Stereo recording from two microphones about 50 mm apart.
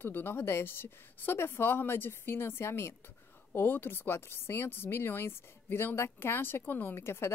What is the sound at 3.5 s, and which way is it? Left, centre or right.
A woman's voice, left.